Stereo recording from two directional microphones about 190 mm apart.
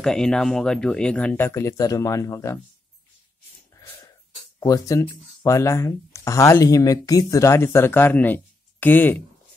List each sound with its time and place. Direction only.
0.0 s speech: 5° left (ahead or behind)
4.6 s speech: 20° left (ahead or behind)